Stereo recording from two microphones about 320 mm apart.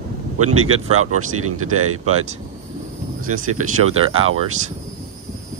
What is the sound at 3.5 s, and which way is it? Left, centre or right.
Speech, right.